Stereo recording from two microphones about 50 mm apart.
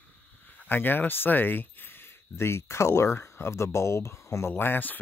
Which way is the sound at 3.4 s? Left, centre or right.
Left.